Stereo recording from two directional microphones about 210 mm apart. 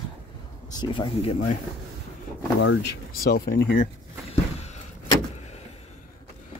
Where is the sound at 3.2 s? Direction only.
45° left (ahead or behind).